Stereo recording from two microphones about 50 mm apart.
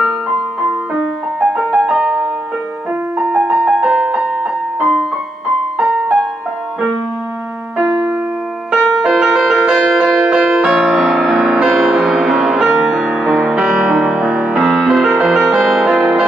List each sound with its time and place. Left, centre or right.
0.6 s music: centre
8.7 s music: centre
10.7 s music: centre
11.7 s music: centre
14.7 s music: centre